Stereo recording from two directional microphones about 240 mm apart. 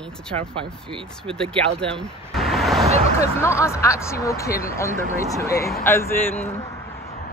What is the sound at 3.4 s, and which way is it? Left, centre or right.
Speech, centre.